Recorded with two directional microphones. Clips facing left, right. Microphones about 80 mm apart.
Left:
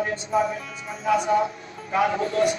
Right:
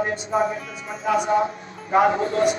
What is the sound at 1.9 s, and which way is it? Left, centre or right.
Speech, right.